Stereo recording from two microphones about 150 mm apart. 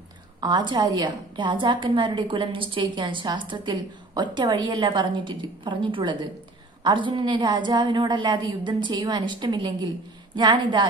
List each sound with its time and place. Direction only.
0.4 s a woman's voice: 30° right (ahead or behind)